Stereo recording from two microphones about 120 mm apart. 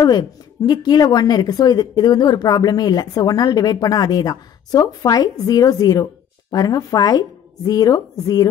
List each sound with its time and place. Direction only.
0.0 s a woman's voice: 30° left (ahead or behind)